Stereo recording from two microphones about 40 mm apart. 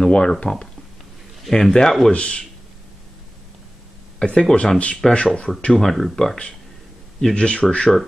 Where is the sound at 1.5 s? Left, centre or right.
Centre.